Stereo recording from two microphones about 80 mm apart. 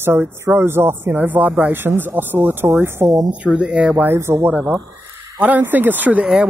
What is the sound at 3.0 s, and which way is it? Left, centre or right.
Speech, right.